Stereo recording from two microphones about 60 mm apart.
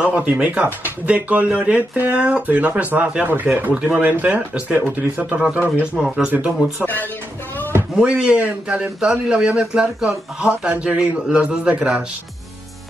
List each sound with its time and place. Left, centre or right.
0.0 s speech: right
5.9 s a man's voice: centre
6.2 s speech: right
8.0 s a man's voice: right